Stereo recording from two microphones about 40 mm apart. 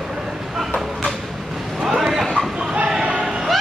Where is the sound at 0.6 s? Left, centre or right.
Centre.